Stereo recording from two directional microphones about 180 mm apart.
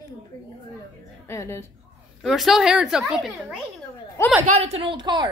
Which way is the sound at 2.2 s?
Centre (ahead or behind).